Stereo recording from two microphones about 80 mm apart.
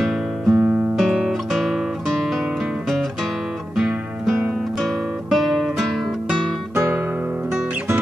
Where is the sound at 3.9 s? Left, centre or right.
Right.